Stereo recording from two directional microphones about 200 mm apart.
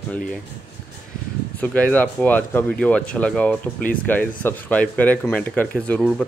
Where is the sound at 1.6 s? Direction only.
10° left (ahead or behind).